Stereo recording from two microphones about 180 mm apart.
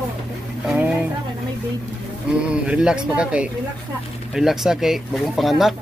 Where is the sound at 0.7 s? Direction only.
5° right (ahead or behind).